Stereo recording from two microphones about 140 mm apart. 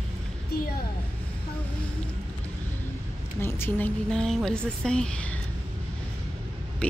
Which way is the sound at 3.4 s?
15° left (ahead or behind).